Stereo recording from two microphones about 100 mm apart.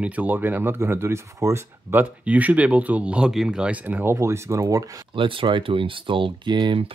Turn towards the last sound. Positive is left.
turn(degrees=-55)  # may be behind; listen again after turning